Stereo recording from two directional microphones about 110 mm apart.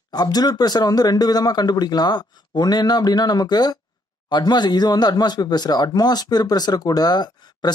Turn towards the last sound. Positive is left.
turn(degrees=40)  # may be behind; listen again after turning